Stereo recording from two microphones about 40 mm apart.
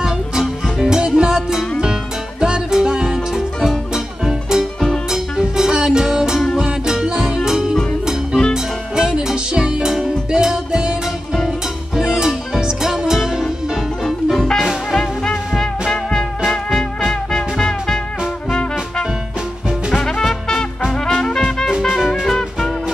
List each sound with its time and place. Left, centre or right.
0.0 s music: centre
0.8 s music: centre
8.9 s music: centre
14.3 s music: centre
22.2 s music: centre